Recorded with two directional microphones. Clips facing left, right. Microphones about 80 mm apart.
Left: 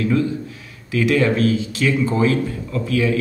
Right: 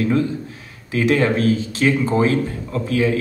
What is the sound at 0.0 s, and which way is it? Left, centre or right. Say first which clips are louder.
Speech: even; right.